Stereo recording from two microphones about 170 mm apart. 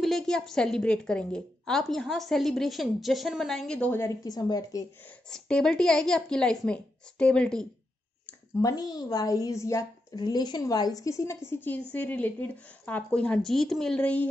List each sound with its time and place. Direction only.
0.0 s a woman's voice: centre (ahead or behind); by 4.8 s 20° left (ahead or behind)
5.3 s a woman's voice: 5° left (ahead or behind)
8.3 s a woman's voice: 20° left (ahead or behind)